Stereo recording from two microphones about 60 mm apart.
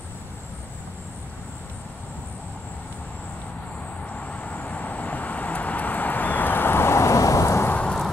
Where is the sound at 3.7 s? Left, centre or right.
Left.